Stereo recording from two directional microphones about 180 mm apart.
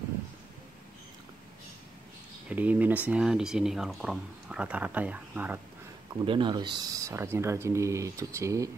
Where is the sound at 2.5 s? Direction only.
10° right (ahead or behind).